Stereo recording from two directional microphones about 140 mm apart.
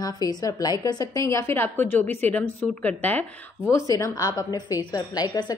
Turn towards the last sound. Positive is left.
turn(degrees=25)  # may be behind; listen again after turning